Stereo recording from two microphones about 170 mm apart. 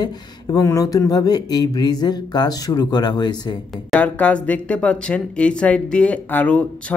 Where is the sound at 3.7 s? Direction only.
5° left (ahead or behind).